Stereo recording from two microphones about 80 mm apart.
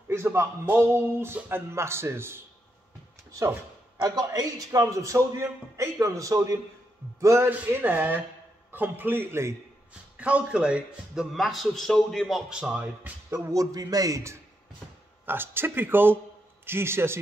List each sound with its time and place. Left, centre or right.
0.1 s a man's voice: right
4.0 s a man's voice: right
7.4 s speech: right
10.1 s speech: centre
11.3 s a man's voice: centre
13.3 s a man's voice: right
15.2 s a man's voice: right